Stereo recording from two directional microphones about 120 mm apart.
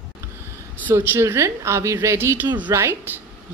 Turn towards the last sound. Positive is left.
turn(degrees=-15)  # may be behind; listen again after turning